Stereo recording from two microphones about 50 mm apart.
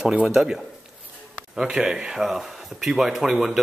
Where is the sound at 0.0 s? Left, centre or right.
Centre.